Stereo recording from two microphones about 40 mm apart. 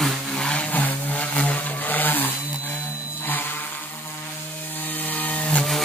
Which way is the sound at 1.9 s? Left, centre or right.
Left.